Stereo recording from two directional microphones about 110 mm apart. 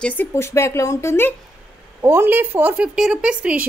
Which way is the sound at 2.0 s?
25° right (ahead or behind).